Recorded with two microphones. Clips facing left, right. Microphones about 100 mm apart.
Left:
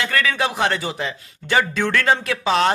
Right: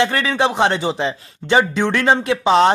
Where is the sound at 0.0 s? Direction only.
25° right (ahead or behind).